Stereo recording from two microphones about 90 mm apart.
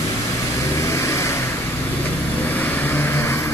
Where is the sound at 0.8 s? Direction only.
35° left (ahead or behind).